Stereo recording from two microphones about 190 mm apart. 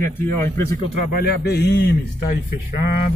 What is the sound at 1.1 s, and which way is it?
Speech, 55° left (ahead or behind).